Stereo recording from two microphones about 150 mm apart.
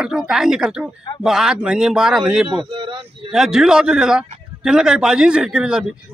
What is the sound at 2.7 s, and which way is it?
Speech, 35° right (ahead or behind).